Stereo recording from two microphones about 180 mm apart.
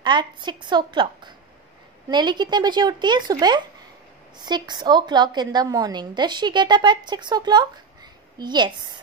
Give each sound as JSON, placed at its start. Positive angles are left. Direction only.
{"t": 0.0, "sound": "a woman's voice", "side_deg": -25}